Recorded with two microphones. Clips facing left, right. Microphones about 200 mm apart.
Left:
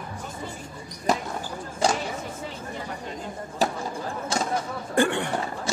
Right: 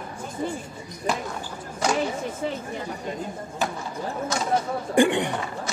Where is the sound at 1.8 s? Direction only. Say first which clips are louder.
Left 1 dB; 30° left (ahead or behind).